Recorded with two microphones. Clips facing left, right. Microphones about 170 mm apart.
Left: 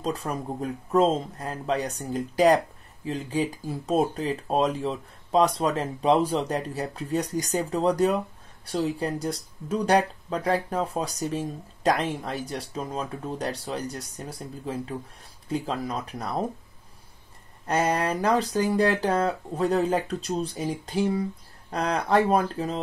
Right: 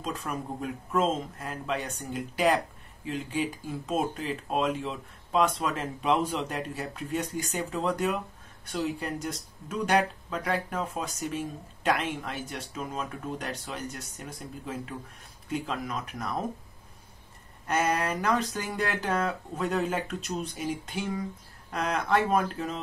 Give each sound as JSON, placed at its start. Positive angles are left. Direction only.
{"t": 0.0, "sound": "speech", "side_deg": 35}
{"t": 17.6, "sound": "speech", "side_deg": 35}